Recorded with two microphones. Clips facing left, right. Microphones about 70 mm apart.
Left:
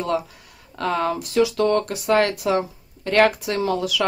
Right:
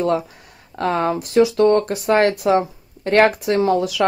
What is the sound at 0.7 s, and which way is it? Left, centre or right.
Speech, right.